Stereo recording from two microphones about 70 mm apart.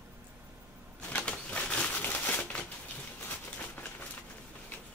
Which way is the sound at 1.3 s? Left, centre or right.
Centre.